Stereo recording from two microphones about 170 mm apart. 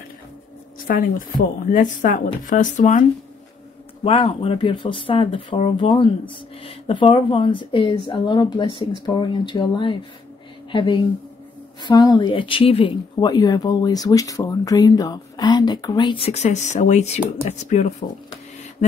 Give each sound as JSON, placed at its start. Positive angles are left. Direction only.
{"t": 0.8, "sound": "a woman's voice", "side_deg": 55}
{"t": 4.0, "sound": "a woman's voice", "side_deg": 35}